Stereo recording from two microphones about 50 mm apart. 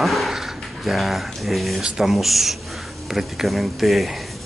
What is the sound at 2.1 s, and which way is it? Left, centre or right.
Speech, centre.